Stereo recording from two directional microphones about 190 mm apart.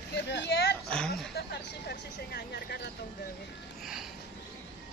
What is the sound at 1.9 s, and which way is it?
Speech, 60° left (ahead or behind).